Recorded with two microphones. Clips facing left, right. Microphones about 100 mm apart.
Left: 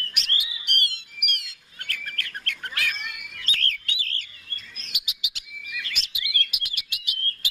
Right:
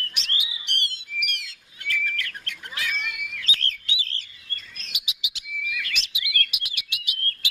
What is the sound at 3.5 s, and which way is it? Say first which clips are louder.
Bird: left 2 dB; 50° left (ahead or behind).